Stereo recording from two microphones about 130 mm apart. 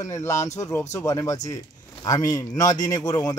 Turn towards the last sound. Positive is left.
turn(degrees=30)  # may be behind; listen again after turning